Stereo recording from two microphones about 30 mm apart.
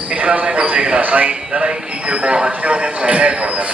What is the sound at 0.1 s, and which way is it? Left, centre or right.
Speech, right.